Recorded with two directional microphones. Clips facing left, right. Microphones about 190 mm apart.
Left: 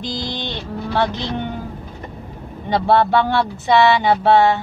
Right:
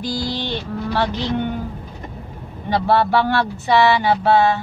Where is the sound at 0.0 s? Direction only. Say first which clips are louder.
Right 2 dB; 20° left (ahead or behind).